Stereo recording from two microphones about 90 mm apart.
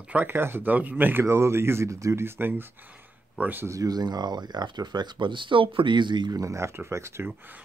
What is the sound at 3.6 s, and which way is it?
Speech, 40° right (ahead or behind).